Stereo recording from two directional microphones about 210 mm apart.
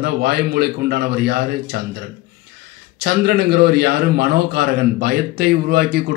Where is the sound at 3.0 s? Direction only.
50° right (ahead or behind).